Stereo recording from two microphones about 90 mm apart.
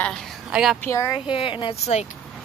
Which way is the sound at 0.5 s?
5° right (ahead or behind).